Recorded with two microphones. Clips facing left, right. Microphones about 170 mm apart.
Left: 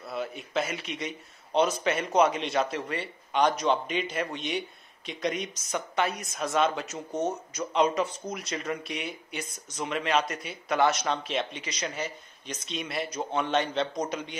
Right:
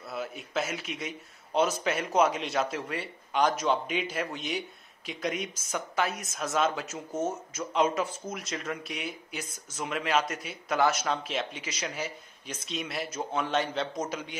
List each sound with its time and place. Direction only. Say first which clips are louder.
0.0 s a man's voice: left 2 dB; centre (ahead or behind)